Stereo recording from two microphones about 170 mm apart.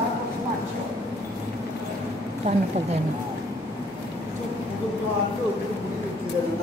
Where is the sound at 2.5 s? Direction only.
40° right (ahead or behind).